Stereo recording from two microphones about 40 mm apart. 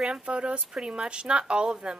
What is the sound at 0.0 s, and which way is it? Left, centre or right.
A woman's voice, right.